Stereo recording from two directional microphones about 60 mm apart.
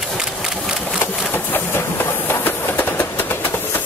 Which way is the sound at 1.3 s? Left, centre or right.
Left.